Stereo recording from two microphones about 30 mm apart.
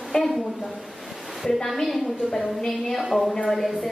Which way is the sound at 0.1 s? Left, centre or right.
Left.